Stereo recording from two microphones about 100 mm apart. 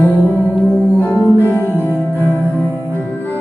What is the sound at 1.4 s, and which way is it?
Music, 20° left (ahead or behind).